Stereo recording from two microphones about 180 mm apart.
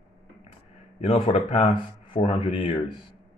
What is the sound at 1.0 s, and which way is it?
Speech, 30° left (ahead or behind).